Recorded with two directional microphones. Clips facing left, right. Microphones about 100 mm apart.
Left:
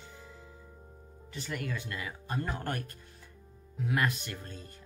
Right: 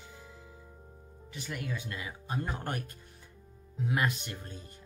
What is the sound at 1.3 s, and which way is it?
Speech, 10° right (ahead or behind).